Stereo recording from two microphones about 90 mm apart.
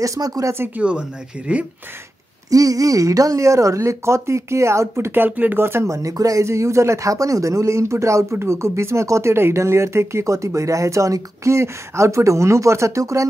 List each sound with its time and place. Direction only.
0.0 s speech: 40° right (ahead or behind)
0.7 s speech: 10° right (ahead or behind)
2.5 s speech: 40° right (ahead or behind)